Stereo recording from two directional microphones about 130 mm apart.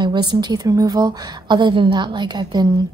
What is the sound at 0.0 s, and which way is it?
A woman's voice, 35° right (ahead or behind).